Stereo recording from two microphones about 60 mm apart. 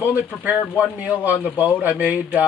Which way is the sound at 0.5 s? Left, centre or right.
Left.